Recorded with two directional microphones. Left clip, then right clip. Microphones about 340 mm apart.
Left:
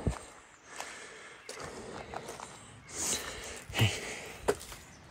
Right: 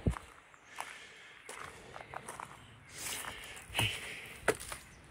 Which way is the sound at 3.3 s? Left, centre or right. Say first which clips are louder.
Left 2 dB; left.